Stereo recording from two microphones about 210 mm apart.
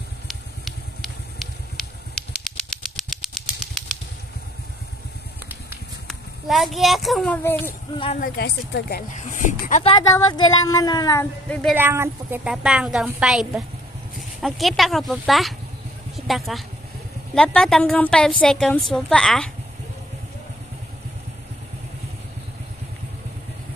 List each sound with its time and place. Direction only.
0.3 s vehicle: centre (ahead or behind)
6.0 s speech: centre (ahead or behind)
8.2 s a woman's voice: 50° left (ahead or behind)
9.2 s speech: 35° left (ahead or behind)
9.9 s speech: 20° left (ahead or behind)
11.7 s a woman's voice: 10° right (ahead or behind)